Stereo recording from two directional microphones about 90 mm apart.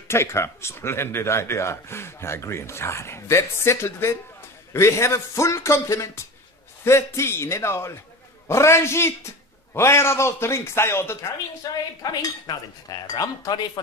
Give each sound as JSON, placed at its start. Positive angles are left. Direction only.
{"t": 0.1, "sound": "speech", "side_deg": 30}
{"t": 11.6, "sound": "speech", "side_deg": 40}
{"t": 12.0, "sound": "cutlery", "side_deg": 45}